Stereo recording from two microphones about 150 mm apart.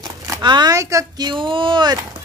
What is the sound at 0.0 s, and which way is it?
A man's voice, 30° right (ahead or behind).